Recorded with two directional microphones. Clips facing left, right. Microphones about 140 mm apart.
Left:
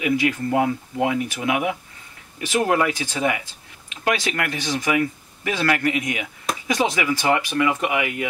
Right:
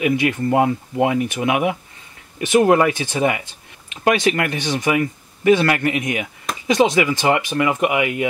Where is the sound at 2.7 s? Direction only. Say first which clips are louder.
Right 5 dB; 20° right (ahead or behind).